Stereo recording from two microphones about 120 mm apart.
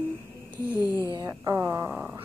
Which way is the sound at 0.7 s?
30° left (ahead or behind).